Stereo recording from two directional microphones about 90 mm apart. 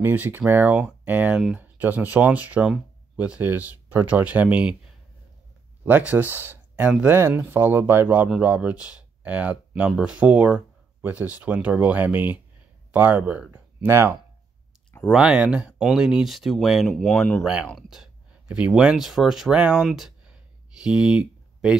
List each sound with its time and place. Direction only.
0.0 s speech: 20° right (ahead or behind)
1.6 s speech: 20° right (ahead or behind)
5.9 s speech: 20° right (ahead or behind)
13.8 s speech: 30° right (ahead or behind)
15.1 s speech: 10° right (ahead or behind)
17.4 s speech: 10° right (ahead or behind)
19.9 s a sound: 5° right (ahead or behind)
20.8 s speech: 10° right (ahead or behind)